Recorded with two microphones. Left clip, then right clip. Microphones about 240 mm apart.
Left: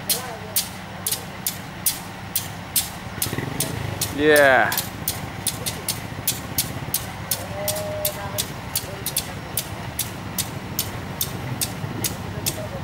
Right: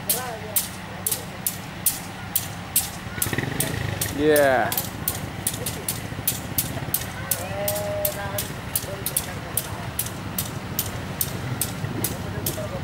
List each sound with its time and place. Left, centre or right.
4.2 s speech: centre